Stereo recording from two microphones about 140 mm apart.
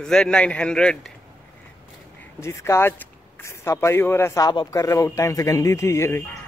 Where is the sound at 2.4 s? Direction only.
20° left (ahead or behind).